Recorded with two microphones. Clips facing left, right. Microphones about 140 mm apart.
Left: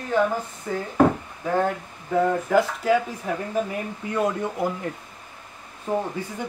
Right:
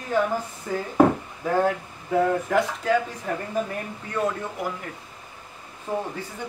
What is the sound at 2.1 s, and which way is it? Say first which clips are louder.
Speech: left 1 dB; centre (ahead or behind).